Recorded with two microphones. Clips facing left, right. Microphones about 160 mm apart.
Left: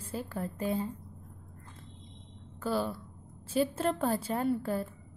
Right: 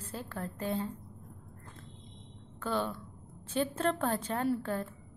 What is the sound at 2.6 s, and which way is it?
A woman's voice, 5° left (ahead or behind).